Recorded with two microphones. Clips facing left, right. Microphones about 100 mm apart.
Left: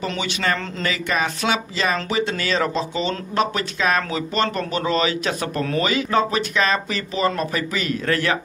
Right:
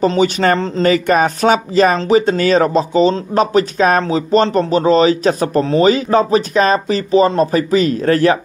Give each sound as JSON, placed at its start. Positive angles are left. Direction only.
{"t": 0.0, "sound": "speech", "side_deg": -40}
{"t": 0.6, "sound": "speech", "side_deg": -30}
{"t": 0.9, "sound": "speech", "side_deg": -45}